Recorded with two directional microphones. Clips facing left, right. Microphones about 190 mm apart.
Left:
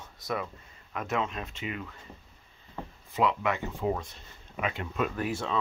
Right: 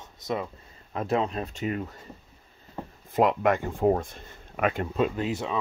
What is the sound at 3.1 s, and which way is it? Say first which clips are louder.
Speech: right 5 dB; 45° right (ahead or behind).